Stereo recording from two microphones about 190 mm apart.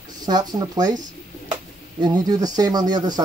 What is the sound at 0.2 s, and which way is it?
Speech, 20° right (ahead or behind).